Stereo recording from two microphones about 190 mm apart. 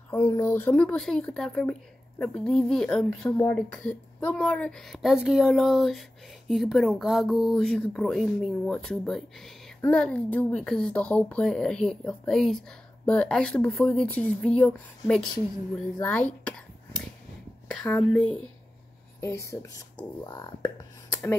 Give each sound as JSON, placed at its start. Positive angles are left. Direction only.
{"t": 0.2, "sound": "speech", "side_deg": 20}
{"t": 17.6, "sound": "speech", "side_deg": 5}